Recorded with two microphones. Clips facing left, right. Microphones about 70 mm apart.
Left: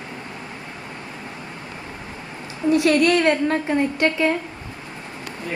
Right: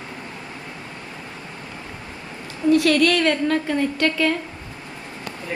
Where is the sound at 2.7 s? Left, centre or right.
Left.